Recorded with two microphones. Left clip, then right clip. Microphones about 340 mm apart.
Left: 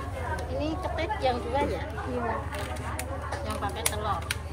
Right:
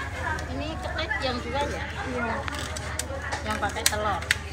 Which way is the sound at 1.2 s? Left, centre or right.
Left.